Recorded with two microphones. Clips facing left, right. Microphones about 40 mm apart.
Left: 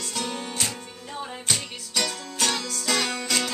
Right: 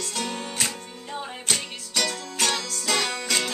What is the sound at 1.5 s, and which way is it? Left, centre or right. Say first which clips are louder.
Music: right 1 dB; centre.